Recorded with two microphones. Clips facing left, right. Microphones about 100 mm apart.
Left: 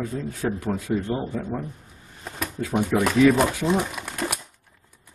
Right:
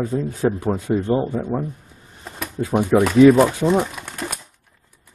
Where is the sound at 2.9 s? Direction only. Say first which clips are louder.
Right 7 dB; 30° right (ahead or behind).